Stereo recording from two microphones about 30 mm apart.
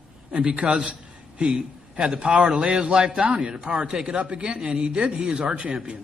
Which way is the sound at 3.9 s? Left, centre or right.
Right.